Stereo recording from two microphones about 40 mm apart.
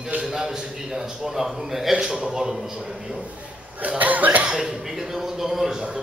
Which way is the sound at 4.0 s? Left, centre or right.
Right.